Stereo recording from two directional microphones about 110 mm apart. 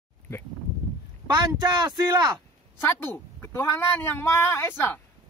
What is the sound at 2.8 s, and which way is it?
A man's voice, 20° left (ahead or behind).